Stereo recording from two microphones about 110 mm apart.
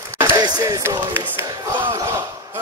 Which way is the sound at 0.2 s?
35° right (ahead or behind).